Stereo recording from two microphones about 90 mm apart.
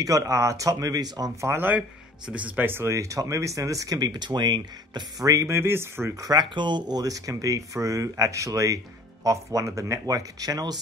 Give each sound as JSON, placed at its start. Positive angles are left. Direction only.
{"t": 0.0, "sound": "speech", "side_deg": -35}
{"t": 1.4, "sound": "speech", "side_deg": -25}
{"t": 1.8, "sound": "speech", "side_deg": -15}
{"t": 5.2, "sound": "speech", "side_deg": -40}
{"t": 6.5, "sound": "speech", "side_deg": -60}